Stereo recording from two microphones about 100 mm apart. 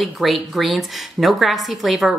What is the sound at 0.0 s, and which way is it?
A woman's voice, centre (ahead or behind).